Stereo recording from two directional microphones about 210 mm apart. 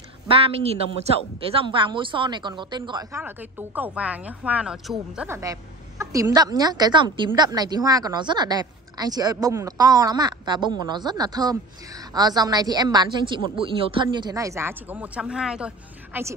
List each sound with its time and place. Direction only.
0.3 s speech: 30° right (ahead or behind)
3.2 s speech: 10° right (ahead or behind)